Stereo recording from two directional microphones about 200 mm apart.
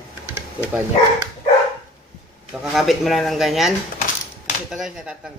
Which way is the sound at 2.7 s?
Centre (ahead or behind).